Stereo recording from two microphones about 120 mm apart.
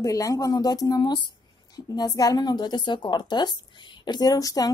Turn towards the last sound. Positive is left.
turn(degrees=30)  # may be behind; listen again after turning